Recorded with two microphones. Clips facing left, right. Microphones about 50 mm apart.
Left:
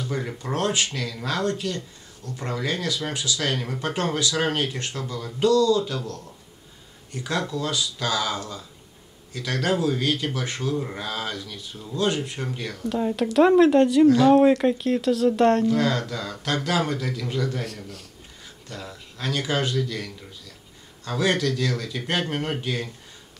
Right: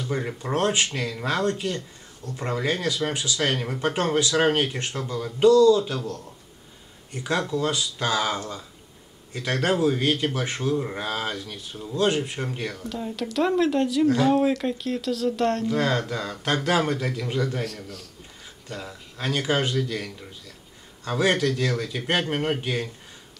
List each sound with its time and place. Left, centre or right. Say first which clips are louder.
0.0 s speech: right 1 dB; right
3.5 s speech: right 2 dB; centre
3.9 s speech: right 2 dB; right
10.7 s speech: right 3 dB; centre
12.8 s speech: left 6 dB; centre
15.8 s speech: even; right
17.6 s speech: right 1 dB; centre
18.7 s speech: right 2 dB; centre
19.2 s speech: right 1 dB; right
21.0 s speech: right 1 dB; right